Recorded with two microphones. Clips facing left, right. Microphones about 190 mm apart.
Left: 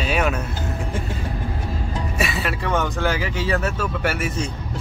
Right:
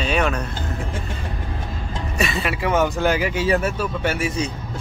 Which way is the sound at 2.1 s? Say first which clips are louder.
Right 3 dB; 5° left (ahead or behind).